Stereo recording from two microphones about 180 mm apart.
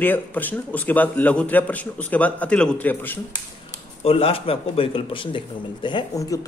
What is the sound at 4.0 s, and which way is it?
A woman's voice, 35° left (ahead or behind).